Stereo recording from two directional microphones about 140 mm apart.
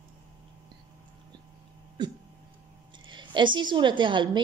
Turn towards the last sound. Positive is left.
turn(degrees=-35)  # may be behind; listen again after turning